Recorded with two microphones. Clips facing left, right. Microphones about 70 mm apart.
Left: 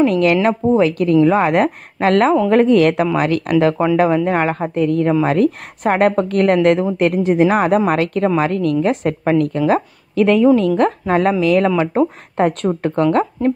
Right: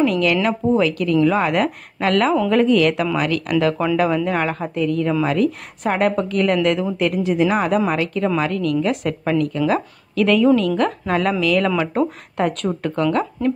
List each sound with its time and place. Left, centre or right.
0.0 s a woman's voice: left
8.4 s a woman's voice: left
12.4 s a woman's voice: left